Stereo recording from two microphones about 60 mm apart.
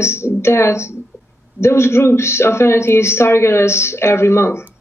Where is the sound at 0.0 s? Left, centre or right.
Left.